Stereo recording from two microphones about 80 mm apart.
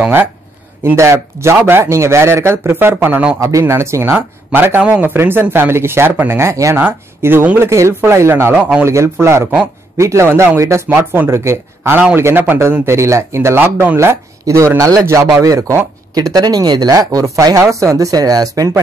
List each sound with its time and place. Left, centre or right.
0.9 s speech: right
16.3 s speech: right